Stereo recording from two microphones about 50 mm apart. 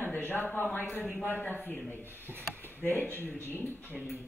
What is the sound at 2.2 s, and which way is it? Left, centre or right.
Speech, right.